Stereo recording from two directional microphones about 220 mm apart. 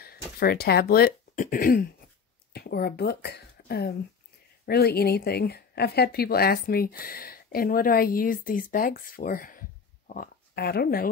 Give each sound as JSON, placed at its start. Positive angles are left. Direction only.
{"t": 0.0, "sound": "speech", "side_deg": 45}